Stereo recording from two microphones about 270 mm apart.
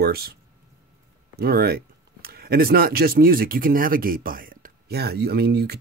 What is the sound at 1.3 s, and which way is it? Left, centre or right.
Speech, right.